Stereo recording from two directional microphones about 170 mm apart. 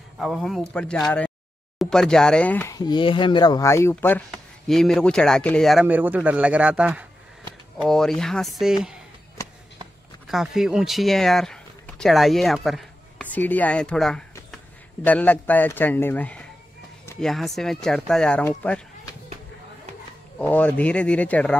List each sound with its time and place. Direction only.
0.2 s speech: centre (ahead or behind)
2.7 s a man's voice: 25° left (ahead or behind); by 5.9 s centre (ahead or behind)
5.9 s a man's voice: 10° right (ahead or behind)
10.2 s a man's voice: centre (ahead or behind)
20.3 s a man's voice: 10° left (ahead or behind)